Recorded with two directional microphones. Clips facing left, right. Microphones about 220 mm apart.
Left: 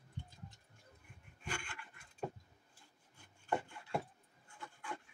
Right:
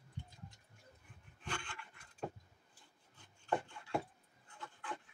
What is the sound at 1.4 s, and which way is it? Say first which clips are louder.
Pant: even; 10° left (ahead or behind).